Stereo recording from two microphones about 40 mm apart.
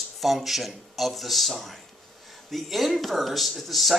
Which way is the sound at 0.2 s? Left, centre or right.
Centre.